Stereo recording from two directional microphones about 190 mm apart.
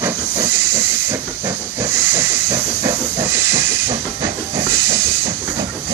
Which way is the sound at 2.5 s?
20° right (ahead or behind).